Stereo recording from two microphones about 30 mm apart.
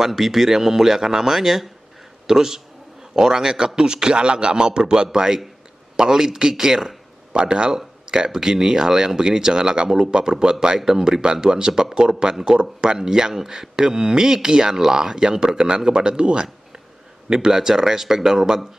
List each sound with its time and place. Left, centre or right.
0.0 s a man's voice: centre
7.3 s speech: right
7.7 s a man's voice: right
10.8 s a man's voice: centre
17.3 s a man's voice: centre